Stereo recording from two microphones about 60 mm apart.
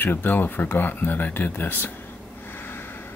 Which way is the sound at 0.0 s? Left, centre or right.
Left.